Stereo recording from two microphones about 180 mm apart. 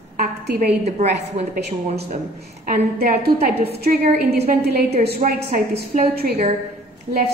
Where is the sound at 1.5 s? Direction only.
60° right (ahead or behind).